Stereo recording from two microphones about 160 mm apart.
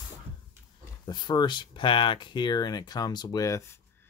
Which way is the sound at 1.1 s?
25° left (ahead or behind).